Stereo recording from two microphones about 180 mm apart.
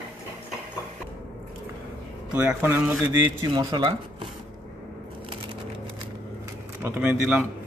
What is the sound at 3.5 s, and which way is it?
Speech, 25° right (ahead or behind).